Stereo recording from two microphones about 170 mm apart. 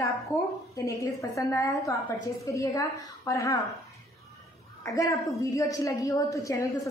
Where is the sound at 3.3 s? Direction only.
20° left (ahead or behind).